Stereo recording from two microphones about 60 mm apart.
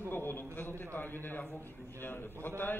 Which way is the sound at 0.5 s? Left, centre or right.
Left.